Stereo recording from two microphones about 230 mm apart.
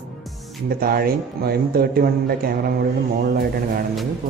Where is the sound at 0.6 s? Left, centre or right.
Right.